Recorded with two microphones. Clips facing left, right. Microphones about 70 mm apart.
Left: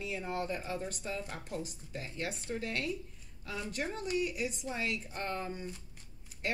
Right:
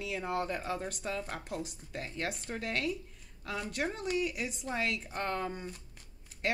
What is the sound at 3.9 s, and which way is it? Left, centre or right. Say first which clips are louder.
A woman's voice: left 1 dB; right.